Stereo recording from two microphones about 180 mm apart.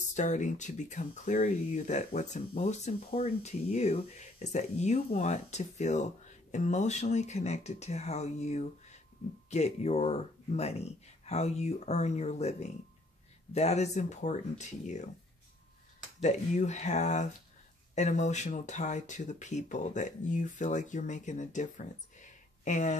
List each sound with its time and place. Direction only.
0.1 s speech: 40° left (ahead or behind)
16.2 s speech: 40° left (ahead or behind)